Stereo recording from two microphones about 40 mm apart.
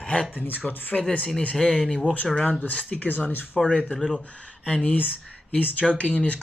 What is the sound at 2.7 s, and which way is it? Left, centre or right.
Speech, left.